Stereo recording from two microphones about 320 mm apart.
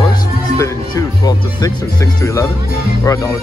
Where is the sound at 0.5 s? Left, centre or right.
Centre.